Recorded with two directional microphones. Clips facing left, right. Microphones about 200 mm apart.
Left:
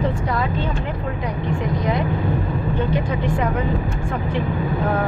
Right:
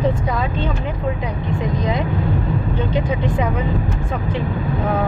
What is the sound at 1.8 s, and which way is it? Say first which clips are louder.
Speech: even; 20° right (ahead or behind).